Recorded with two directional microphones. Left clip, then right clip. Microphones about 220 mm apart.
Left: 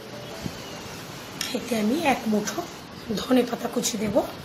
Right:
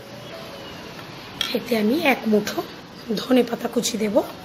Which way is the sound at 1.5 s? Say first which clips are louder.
Right 4 dB; 25° right (ahead or behind).